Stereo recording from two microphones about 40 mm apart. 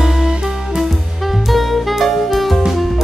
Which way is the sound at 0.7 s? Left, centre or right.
Centre.